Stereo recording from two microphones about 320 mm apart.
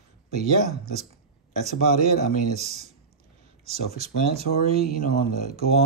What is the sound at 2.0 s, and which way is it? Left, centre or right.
Speech, right.